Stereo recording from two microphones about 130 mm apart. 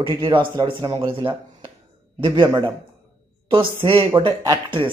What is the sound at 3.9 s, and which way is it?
A man's voice, 40° right (ahead or behind).